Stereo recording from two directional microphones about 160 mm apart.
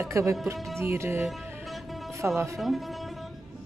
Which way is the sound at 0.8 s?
15° right (ahead or behind).